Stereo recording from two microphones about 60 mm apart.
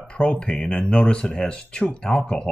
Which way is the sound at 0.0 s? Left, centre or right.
Centre.